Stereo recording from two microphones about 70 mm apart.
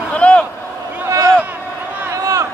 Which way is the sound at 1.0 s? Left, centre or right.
Right.